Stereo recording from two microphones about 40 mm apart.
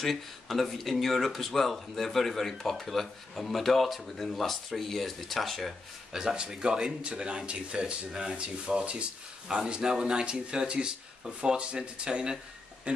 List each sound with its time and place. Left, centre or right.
0.0 s speech: centre
6.1 s speech: right
12.9 s a sound: right